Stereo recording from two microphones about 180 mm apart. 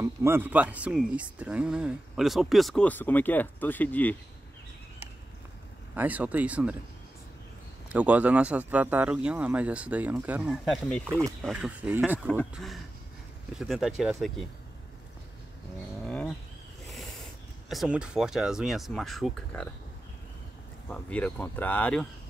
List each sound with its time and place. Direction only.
0.0 s speech: 15° right (ahead or behind); by 4.2 s 10° left (ahead or behind)
5.9 s speech: 10° right (ahead or behind)
7.9 s speech: 10° right (ahead or behind)
11.1 s speech: 15° right (ahead or behind)
11.4 s speech: 5° right (ahead or behind)
16.0 s a sound: 5° left (ahead or behind)
17.6 s speech: 5° right (ahead or behind)
20.9 s speech: 10° left (ahead or behind)